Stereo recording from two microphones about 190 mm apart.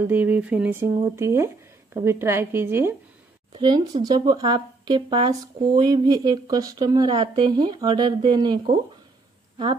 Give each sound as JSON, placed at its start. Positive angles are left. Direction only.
{"t": 0.0, "sound": "speech", "side_deg": -10}